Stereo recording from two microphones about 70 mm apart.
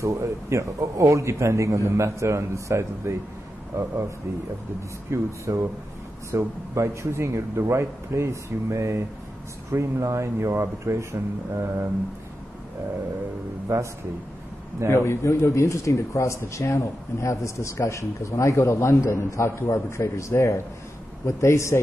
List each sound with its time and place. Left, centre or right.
0.0 s a man's voice: right
5.1 s a man's voice: right
13.7 s a man's voice: right
14.9 s speech: left